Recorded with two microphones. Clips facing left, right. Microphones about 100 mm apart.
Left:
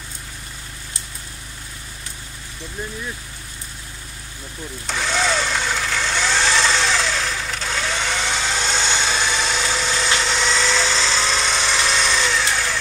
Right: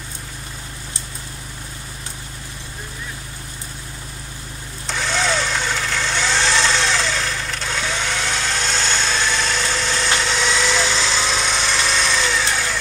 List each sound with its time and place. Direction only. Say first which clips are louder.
4.8 s vehicle: even; centre (ahead or behind)